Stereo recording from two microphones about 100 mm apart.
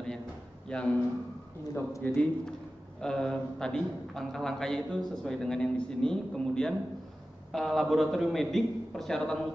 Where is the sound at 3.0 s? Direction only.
5° left (ahead or behind).